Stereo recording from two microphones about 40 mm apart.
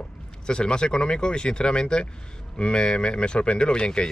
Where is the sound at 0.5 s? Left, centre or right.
Left.